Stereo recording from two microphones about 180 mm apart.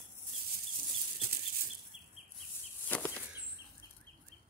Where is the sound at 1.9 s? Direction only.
5° right (ahead or behind).